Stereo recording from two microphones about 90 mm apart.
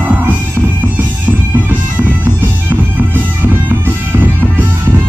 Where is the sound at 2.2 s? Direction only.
20° right (ahead or behind).